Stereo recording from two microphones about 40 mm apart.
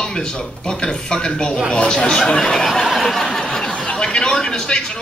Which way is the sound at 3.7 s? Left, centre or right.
Left.